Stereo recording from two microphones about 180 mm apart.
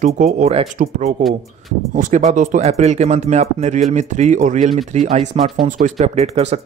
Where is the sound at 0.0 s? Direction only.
40° right (ahead or behind).